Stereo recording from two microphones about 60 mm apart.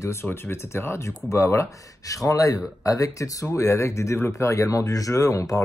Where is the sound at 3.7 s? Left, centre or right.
Left.